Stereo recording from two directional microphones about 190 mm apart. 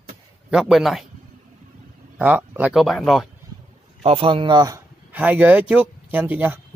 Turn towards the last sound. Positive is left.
turn(degrees=-10)  # may be behind; listen again after turning